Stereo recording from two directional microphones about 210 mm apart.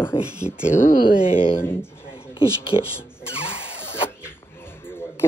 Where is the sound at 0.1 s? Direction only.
20° left (ahead or behind).